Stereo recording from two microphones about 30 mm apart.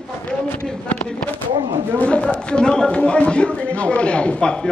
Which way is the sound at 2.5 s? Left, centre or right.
Left.